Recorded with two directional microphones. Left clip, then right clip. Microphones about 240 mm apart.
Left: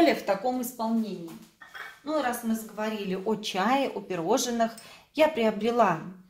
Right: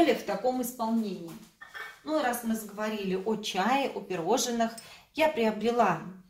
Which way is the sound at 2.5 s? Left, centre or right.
Left.